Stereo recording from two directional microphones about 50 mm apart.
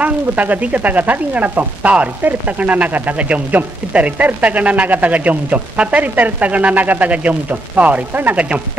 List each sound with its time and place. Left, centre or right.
0.0 s speech: right
8.4 s speech: right